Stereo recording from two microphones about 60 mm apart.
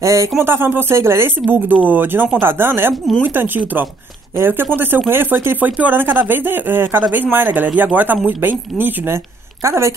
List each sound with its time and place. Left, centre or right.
0.0 s speech: right
0.4 s speech: right
1.5 s speech: right